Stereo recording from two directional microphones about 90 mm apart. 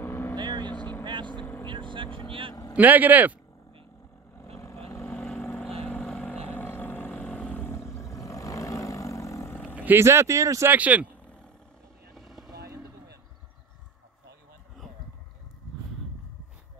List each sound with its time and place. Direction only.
0.0 s vehicle: 25° left (ahead or behind)
0.4 s vehicle: 55° right (ahead or behind)
0.7 s vehicle: 20° left (ahead or behind)
1.7 s vehicle: 65° right (ahead or behind)
2.7 s speech: 20° right (ahead or behind)
4.4 s vehicle: 35° left (ahead or behind)
4.9 s vehicle: 10° left (ahead or behind)
6.5 s a sound: 20° left (ahead or behind)
7.2 s vehicle: 15° left (ahead or behind)
7.5 s vehicle: 25° left (ahead or behind)
9.9 s speech: 30° right (ahead or behind)
10.7 s speech: 15° right (ahead or behind)
12.3 s boat: centre (ahead or behind)